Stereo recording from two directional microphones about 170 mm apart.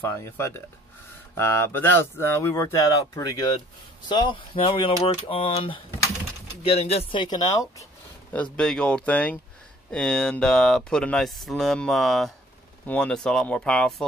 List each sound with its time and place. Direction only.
0.0 s speech: 15° left (ahead or behind)
8.3 s speech: 5° left (ahead or behind)